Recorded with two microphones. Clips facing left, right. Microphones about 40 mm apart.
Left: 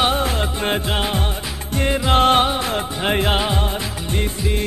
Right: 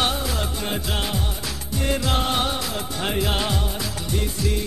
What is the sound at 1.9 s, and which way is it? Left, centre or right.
Music, left.